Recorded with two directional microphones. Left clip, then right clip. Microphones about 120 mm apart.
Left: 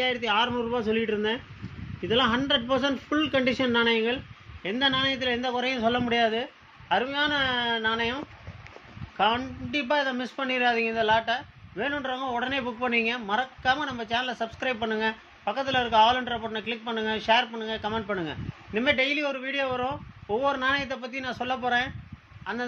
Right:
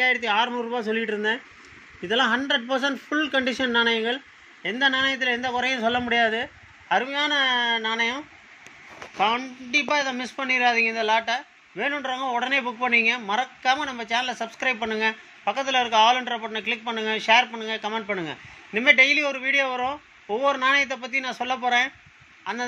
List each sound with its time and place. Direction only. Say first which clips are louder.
0.0 s a woman's voice: right 3 dB; 20° right (ahead or behind)
9.2 s a woman's voice: right 2 dB; 5° right (ahead or behind)